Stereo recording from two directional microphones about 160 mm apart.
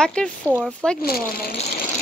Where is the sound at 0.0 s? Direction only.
5° left (ahead or behind).